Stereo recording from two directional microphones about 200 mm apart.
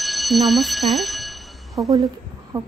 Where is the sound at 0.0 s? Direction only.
Centre (ahead or behind).